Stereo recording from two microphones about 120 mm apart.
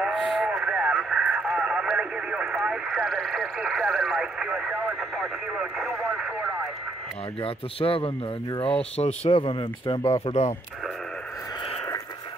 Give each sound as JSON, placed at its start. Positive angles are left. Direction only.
{"t": 0.0, "sound": "radio", "side_deg": -5}
{"t": 7.4, "sound": "speech", "side_deg": 50}